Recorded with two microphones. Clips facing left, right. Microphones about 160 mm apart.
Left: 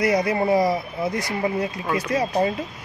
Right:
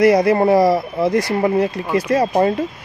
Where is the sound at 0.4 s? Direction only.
80° right.